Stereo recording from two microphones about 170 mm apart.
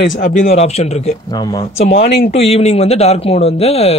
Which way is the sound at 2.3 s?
35° left (ahead or behind).